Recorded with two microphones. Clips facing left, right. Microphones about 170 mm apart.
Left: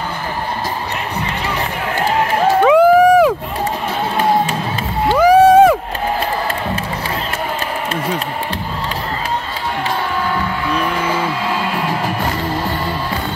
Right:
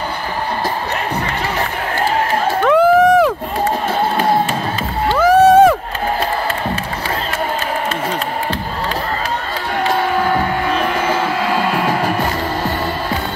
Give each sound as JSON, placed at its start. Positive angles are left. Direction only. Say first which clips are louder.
{"t": 2.6, "sound": "crowd", "louder": "left 1 dB", "side_deg": 10}
{"t": 5.0, "sound": "music", "louder": "left 1 dB", "side_deg": 10}
{"t": 10.2, "sound": "a sound", "louder": "right 3 dB", "side_deg": -55}